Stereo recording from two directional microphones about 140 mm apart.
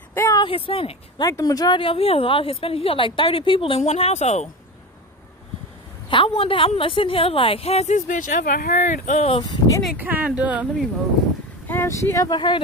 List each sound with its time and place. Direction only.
0.1 s a sound: 15° left (ahead or behind)
0.4 s speech: 40° left (ahead or behind)
1.2 s speech: 25° left (ahead or behind); by 4.5 s 55° left (ahead or behind)
6.0 s a woman's voice: 40° left (ahead or behind); by 9.4 s 55° left (ahead or behind)
9.4 s speech: 25° left (ahead or behind)
9.9 s speech: 10° right (ahead or behind)
11.6 s speech: 15° left (ahead or behind)